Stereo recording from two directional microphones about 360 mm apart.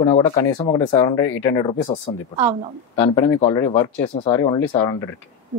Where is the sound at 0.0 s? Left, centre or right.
Centre.